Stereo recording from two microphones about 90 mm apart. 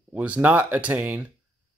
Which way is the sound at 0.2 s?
15° right (ahead or behind).